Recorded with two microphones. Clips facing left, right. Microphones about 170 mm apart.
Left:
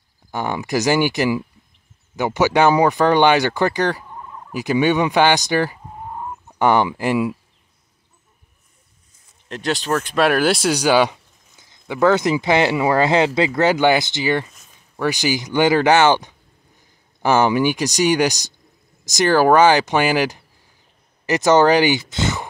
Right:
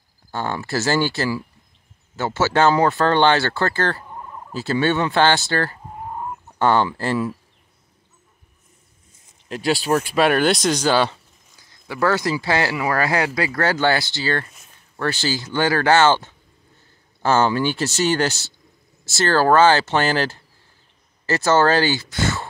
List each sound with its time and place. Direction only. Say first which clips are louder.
0.3 s speech: left 3 dB; 15° left (ahead or behind)
4.0 s fowl: even; 10° right (ahead or behind)
4.5 s speech: left 3 dB; 15° left (ahead or behind)
9.5 s speech: right 2 dB; 5° right (ahead or behind)
10.1 s speech: left 2 dB; centre (ahead or behind); by 22.5 s 20° left (ahead or behind)